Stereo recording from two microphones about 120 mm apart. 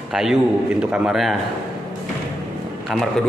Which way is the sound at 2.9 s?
Centre (ahead or behind).